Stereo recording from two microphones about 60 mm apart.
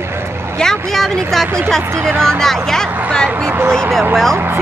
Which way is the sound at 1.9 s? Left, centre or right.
Right.